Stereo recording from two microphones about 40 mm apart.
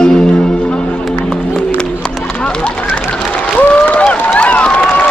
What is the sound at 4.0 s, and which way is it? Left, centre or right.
Run, left.